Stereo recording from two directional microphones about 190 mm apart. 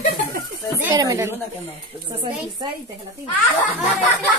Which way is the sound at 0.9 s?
20° right (ahead or behind).